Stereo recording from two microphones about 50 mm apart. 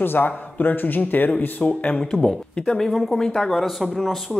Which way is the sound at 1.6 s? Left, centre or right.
Left.